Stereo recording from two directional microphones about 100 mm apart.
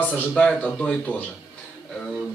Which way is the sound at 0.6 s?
15° left (ahead or behind).